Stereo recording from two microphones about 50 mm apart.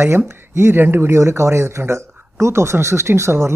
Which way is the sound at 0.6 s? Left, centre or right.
Right.